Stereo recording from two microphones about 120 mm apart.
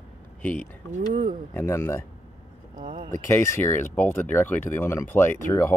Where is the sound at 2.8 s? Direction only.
40° right (ahead or behind).